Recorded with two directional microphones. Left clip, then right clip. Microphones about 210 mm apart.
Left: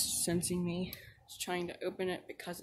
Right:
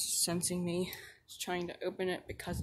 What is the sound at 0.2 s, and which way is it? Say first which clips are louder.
Speech: even; 5° right (ahead or behind).